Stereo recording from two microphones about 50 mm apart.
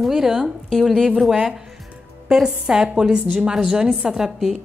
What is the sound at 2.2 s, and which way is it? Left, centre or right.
A woman's voice, centre.